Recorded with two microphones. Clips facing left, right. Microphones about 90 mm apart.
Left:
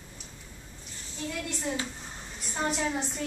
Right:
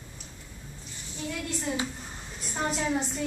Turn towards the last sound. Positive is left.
turn(degrees=0)  # may be behind; listen again after turning